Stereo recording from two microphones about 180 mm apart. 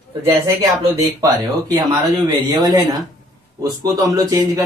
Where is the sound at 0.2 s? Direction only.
20° right (ahead or behind).